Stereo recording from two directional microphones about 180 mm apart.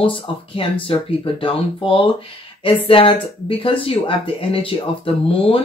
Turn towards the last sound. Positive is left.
turn(degrees=30)  # may be behind; listen again after turning